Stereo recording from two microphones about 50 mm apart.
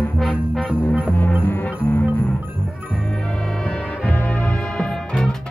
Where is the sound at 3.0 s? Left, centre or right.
Centre.